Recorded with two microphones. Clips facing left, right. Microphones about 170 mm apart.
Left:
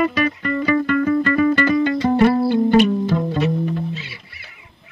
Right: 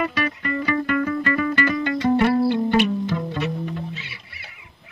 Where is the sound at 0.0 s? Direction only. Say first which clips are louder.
Left 5 dB; 35° left (ahead or behind).